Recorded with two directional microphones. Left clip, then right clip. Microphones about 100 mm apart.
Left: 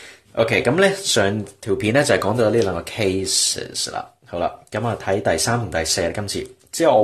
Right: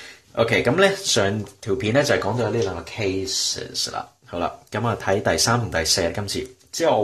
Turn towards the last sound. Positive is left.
turn(degrees=30)  # may be behind; listen again after turning